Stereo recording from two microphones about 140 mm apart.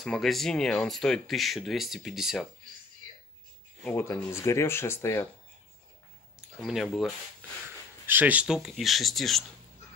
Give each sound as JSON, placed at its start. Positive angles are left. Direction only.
{"t": 0.0, "sound": "speech", "side_deg": 0}
{"t": 3.8, "sound": "speech", "side_deg": 15}
{"t": 6.6, "sound": "speech", "side_deg": 0}
{"t": 8.1, "sound": "speech", "side_deg": -10}